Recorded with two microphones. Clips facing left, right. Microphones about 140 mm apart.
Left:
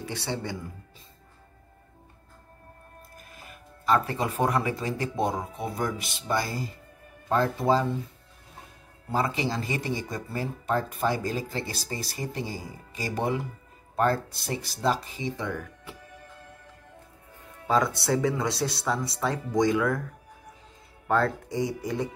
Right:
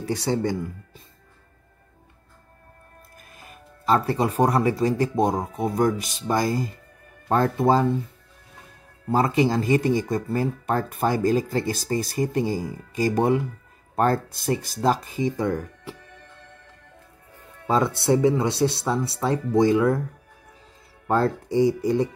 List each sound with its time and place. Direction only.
0.0 s speech: 40° right (ahead or behind)
3.4 s speech: 35° right (ahead or behind)
9.1 s speech: 45° right (ahead or behind)
17.6 s speech: 25° right (ahead or behind)
21.1 s speech: 30° right (ahead or behind)